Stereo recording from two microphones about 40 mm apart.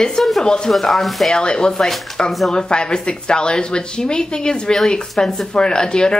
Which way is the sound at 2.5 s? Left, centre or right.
Left.